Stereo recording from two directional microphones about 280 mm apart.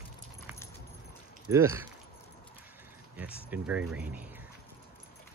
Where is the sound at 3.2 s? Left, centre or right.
Centre.